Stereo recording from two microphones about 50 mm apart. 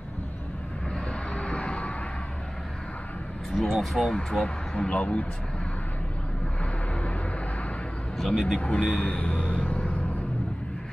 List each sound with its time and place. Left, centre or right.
1.3 s vehicle: left
3.7 s speech: centre; by 5.2 s left
6.6 s vehicle: left
8.3 s speech: centre